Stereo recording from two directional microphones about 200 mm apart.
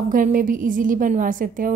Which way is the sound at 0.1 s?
45° right (ahead or behind).